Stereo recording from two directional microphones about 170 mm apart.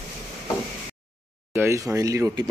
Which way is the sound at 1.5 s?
15° right (ahead or behind).